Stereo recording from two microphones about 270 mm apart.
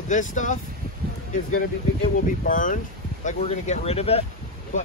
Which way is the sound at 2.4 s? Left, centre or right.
Left.